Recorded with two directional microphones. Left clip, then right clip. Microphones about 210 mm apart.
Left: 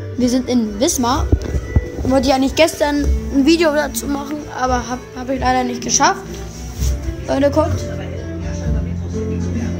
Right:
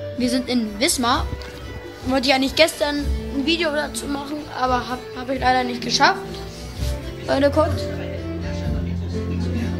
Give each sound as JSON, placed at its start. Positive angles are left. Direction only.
{"t": 0.2, "sound": "a woman's voice", "side_deg": 0}
{"t": 2.6, "sound": "a woman's voice", "side_deg": 20}
{"t": 7.2, "sound": "a woman's voice", "side_deg": 0}